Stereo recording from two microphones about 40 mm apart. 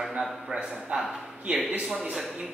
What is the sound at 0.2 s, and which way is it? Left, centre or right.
Speech, centre.